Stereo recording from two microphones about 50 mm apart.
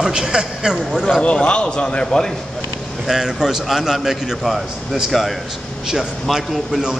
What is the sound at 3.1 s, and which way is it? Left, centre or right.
A man's voice, centre.